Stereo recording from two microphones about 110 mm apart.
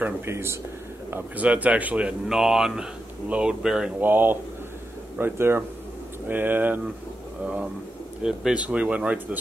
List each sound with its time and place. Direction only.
0.0 s speech: 20° right (ahead or behind); by 3.9 s 5° right (ahead or behind)
4.0 s speech: 20° right (ahead or behind)
8.2 s speech: 5° right (ahead or behind)